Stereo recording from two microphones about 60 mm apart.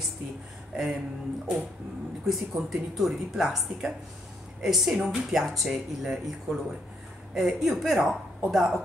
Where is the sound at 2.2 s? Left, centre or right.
Centre.